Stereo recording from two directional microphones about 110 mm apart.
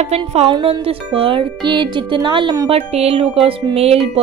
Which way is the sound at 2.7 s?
65° right (ahead or behind).